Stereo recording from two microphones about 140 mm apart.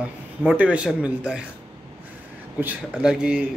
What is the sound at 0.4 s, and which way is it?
Speech, 10° right (ahead or behind).